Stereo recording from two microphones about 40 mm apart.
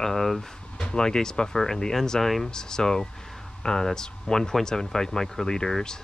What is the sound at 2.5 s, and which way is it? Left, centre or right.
Speech, centre.